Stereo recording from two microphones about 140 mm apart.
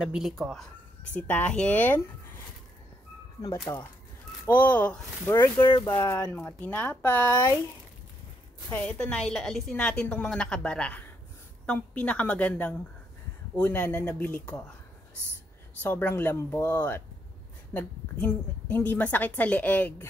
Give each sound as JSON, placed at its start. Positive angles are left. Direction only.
{"t": 0.0, "sound": "speech", "side_deg": -5}
{"t": 1.1, "sound": "a woman's voice", "side_deg": 10}
{"t": 3.6, "sound": "a woman's voice", "side_deg": 15}
{"t": 5.3, "sound": "a woman's voice", "side_deg": 30}
{"t": 8.7, "sound": "a woman's voice", "side_deg": 10}
{"t": 15.8, "sound": "a woman's voice", "side_deg": 15}